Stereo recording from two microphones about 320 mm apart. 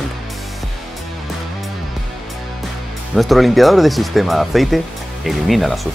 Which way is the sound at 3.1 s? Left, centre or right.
Centre.